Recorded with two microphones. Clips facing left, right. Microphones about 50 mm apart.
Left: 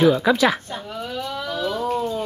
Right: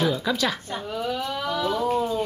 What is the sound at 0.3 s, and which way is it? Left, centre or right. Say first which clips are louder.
Speech: left 7 dB; left.